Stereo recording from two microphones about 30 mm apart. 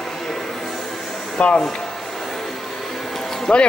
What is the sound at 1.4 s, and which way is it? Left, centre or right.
Speech, left.